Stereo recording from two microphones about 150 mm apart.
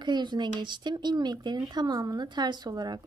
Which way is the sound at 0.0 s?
30° right (ahead or behind).